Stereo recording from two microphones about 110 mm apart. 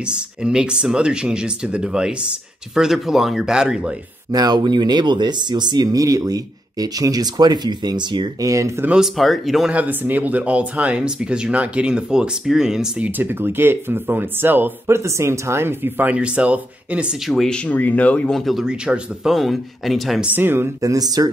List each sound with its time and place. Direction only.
0.0 s speech: 10° right (ahead or behind)
4.3 s speech: 35° right (ahead or behind)
8.5 s speech: 30° right (ahead or behind)
8.8 s speech: 5° right (ahead or behind)
9.8 s speech: 15° right (ahead or behind)
13.2 s speech: 20° right (ahead or behind)
17.3 s speech: centre (ahead or behind)
17.6 s speech: 15° left (ahead or behind)
18.4 s speech: centre (ahead or behind)
20.2 s speech: 20° right (ahead or behind); by 21.3 s 35° right (ahead or behind)